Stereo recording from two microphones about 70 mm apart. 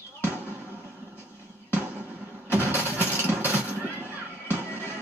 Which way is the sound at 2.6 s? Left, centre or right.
Right.